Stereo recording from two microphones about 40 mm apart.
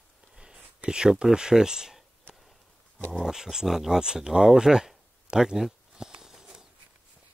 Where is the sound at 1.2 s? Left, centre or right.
Centre.